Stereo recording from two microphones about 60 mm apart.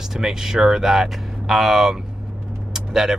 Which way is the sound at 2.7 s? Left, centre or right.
Centre.